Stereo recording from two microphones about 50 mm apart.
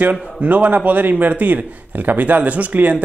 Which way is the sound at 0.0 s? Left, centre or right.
Right.